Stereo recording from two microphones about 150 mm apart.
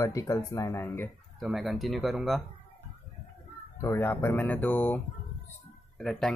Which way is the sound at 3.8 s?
15° left (ahead or behind).